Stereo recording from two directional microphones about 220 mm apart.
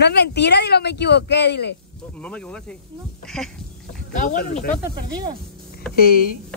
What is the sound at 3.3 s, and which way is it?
Speech, 5° left (ahead or behind).